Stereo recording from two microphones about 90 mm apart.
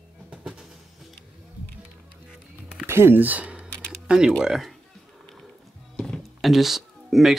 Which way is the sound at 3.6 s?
10° left (ahead or behind).